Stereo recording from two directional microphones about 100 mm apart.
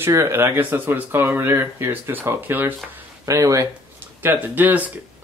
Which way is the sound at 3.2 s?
30° right (ahead or behind).